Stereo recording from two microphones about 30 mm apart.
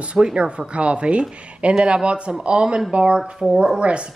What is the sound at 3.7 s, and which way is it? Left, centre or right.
Speech, right.